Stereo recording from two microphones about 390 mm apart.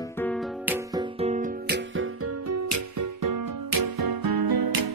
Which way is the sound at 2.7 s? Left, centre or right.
Right.